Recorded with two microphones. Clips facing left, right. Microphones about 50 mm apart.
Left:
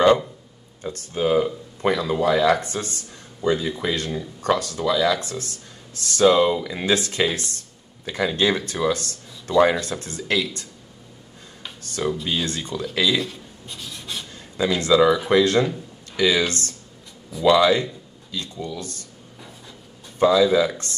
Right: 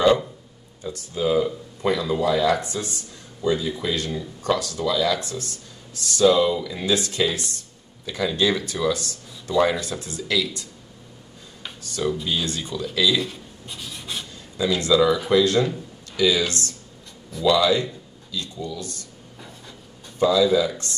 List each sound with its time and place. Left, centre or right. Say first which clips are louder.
0.8 s speech: left 1 dB; left
11.8 s a sound: even; left
12.4 s speech: left 1 dB; left
13.2 s a sound: even; centre
14.6 s speech: left 2 dB; left
20.2 s speech: left 2 dB; left